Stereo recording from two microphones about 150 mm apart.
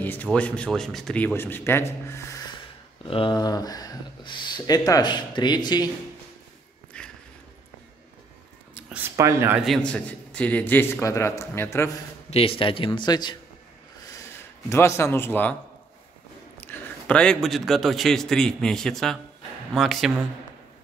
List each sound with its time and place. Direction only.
0.0 s speech: 10° left (ahead or behind)
3.1 s speech: 35° left (ahead or behind)
6.9 s sniff: 5° left (ahead or behind)
8.8 s a sound: 10° right (ahead or behind)
9.1 s speech: 20° right (ahead or behind)
9.6 s speech: 5° left (ahead or behind)
12.3 s a man's voice: 40° left (ahead or behind)
14.7 s speech: 20° left (ahead or behind)
16.6 s a man's voice: 5° left (ahead or behind)